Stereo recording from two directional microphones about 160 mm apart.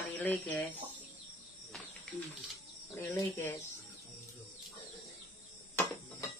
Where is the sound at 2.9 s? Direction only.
15° left (ahead or behind).